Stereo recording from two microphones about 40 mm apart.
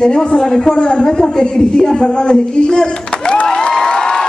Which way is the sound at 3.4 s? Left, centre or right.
Centre.